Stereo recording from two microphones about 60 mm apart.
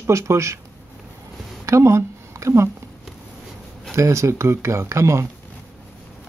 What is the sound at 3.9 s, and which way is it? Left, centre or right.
Speech, right.